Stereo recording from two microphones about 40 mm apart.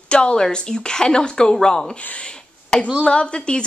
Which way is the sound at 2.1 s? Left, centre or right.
Left.